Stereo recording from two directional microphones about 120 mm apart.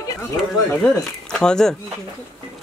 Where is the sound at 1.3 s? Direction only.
5° left (ahead or behind).